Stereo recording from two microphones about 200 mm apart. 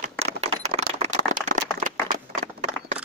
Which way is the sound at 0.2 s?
30° right (ahead or behind).